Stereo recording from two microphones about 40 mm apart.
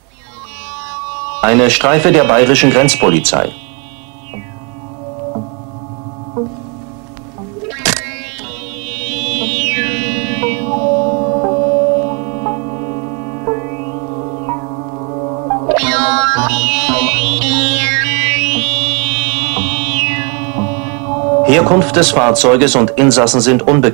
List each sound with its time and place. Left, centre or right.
0.9 s music: left
2.0 s speech: centre
2.7 s speech: left
6.4 s music: centre
7.6 s music: centre
9.0 s music: centre; by 11.1 s left
11.1 s music: centre
12.0 s music: centre
17.8 s music: centre
18.1 s music: centre
18.9 s music: centre
21.5 s music: centre
21.9 s speech: centre